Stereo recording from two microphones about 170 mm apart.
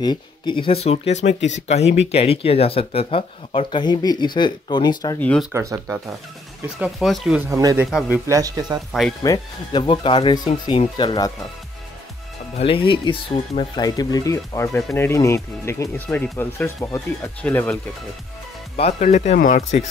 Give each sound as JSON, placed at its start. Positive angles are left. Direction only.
{"t": 0.0, "sound": "speech", "side_deg": 25}
{"t": 5.2, "sound": "speech", "side_deg": 5}
{"t": 5.5, "sound": "speech", "side_deg": -15}
{"t": 6.8, "sound": "speech", "side_deg": 0}
{"t": 7.4, "sound": "speech", "side_deg": -20}
{"t": 7.8, "sound": "speech", "side_deg": -5}
{"t": 8.3, "sound": "speech", "side_deg": -20}
{"t": 9.2, "sound": "speech", "side_deg": 25}
{"t": 12.5, "sound": "speech", "side_deg": 30}
{"t": 18.8, "sound": "speech", "side_deg": 40}